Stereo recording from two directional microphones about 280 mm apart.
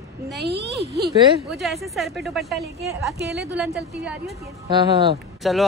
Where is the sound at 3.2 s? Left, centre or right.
Right.